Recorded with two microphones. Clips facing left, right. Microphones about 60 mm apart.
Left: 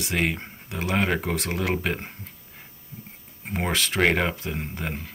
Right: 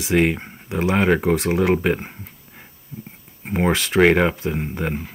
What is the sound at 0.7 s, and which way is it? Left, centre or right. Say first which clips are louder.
Speech: right 7 dB; right.